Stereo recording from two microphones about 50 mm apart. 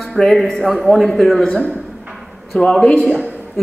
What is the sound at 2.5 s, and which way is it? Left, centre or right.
Speech, centre.